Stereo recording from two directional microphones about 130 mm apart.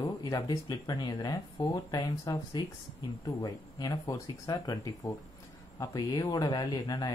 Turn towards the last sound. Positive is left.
turn(degrees=30)  # may be behind; listen again after turning